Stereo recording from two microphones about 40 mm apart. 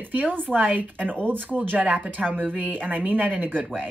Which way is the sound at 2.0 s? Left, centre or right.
Right.